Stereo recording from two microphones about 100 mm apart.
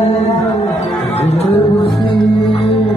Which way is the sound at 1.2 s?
90° left.